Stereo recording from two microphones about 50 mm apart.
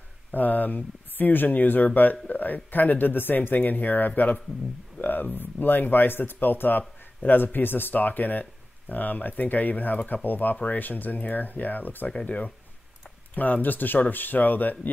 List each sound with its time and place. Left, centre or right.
0.3 s speech: left
12.1 s speech: left